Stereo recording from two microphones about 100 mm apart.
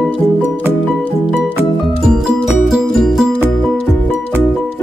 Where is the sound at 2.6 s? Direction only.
Centre (ahead or behind).